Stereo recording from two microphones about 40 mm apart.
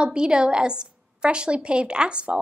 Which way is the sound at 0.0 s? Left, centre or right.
Right.